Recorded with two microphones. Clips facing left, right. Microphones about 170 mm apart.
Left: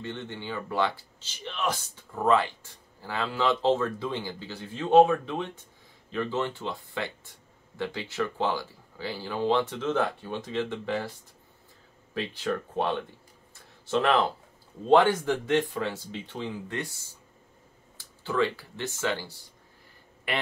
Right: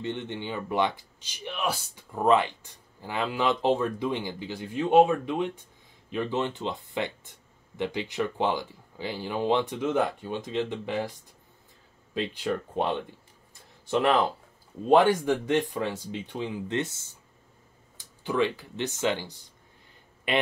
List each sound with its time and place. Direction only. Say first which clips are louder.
0.0 s speech: right 4 dB; 20° right (ahead or behind)